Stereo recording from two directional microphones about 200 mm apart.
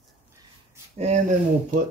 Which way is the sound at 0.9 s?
35° right (ahead or behind).